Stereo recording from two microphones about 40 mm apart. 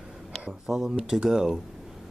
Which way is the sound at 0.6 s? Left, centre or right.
Centre.